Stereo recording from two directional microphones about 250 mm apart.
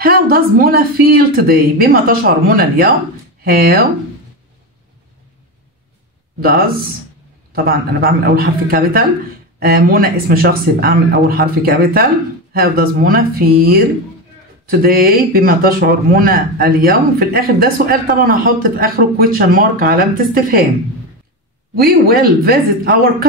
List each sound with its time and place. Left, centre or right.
0.0 s speech: right
6.4 s speech: right
22.0 s speech: right